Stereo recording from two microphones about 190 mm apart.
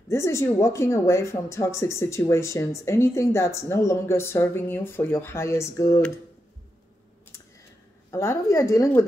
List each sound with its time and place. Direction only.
0.1 s speech: 15° left (ahead or behind)
8.1 s speech: 15° left (ahead or behind)